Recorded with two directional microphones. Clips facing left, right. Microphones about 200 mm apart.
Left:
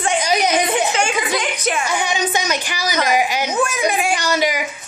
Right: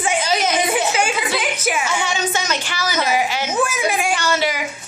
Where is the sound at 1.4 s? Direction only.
5° right (ahead or behind).